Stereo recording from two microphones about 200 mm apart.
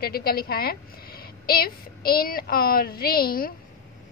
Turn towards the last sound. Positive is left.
turn(degrees=45)  # may be behind; listen again after turning